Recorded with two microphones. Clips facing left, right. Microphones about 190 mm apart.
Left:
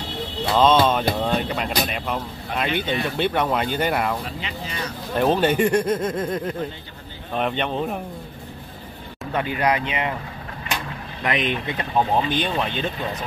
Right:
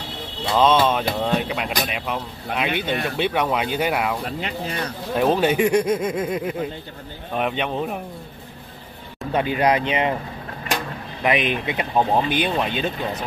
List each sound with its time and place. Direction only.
0.6 s speech: 5° right (ahead or behind)
4.2 s speech: 50° right (ahead or behind)
5.1 s speech: 5° right (ahead or behind)
9.3 s speech: 20° right (ahead or behind)
11.2 s speech: 10° right (ahead or behind)